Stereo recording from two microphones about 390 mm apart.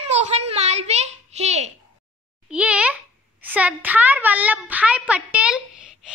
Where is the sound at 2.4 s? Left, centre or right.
Centre.